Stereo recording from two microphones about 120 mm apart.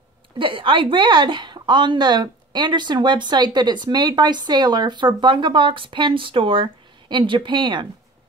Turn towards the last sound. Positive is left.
turn(degrees=-40)  # may be behind; listen again after turning